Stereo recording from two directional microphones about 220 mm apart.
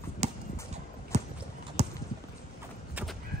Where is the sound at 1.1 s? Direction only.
30° right (ahead or behind).